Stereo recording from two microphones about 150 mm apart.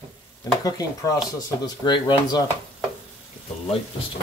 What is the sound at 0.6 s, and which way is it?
Speech, 25° left (ahead or behind).